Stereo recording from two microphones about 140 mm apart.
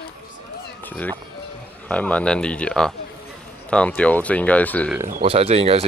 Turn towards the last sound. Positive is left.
turn(degrees=-45)  # may be behind; listen again after turning